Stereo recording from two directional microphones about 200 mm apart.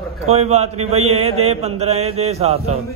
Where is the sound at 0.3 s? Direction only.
35° right (ahead or behind).